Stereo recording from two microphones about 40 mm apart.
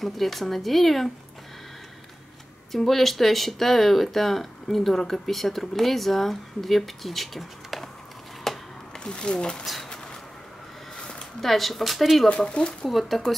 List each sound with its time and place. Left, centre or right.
0.0 s speech: centre
2.7 s speech: centre
8.5 s a sound: centre
8.9 s speech: left
11.0 s a sound: left
11.4 s speech: centre
12.3 s speech: left
12.8 s speech: centre